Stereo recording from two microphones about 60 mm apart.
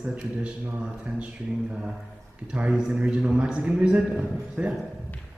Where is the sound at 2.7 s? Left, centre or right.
Centre.